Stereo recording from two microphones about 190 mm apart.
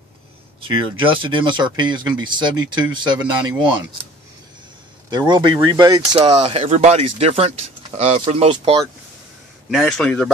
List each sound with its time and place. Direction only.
0.6 s speech: 25° right (ahead or behind)
5.1 s speech: 20° right (ahead or behind)
6.2 s speech: 30° right (ahead or behind)
9.7 s a man's voice: 5° left (ahead or behind)